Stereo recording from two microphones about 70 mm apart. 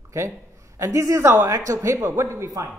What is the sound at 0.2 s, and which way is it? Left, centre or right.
Speech, right.